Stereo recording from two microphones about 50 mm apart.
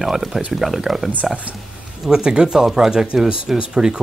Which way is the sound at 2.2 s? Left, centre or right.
Centre.